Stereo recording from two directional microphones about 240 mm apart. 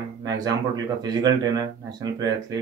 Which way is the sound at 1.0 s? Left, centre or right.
Centre.